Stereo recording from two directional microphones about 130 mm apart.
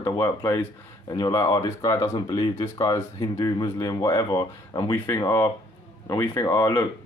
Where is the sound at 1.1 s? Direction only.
35° left (ahead or behind).